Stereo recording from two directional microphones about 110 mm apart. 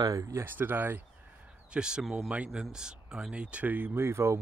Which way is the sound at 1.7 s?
5° right (ahead or behind).